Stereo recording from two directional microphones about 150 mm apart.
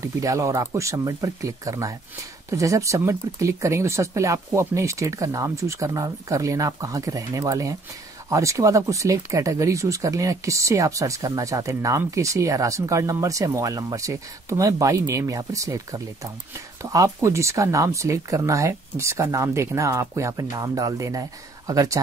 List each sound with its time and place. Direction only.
0.0 s speech: 20° right (ahead or behind)